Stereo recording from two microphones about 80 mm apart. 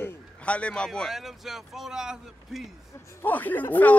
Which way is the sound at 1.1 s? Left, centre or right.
Centre.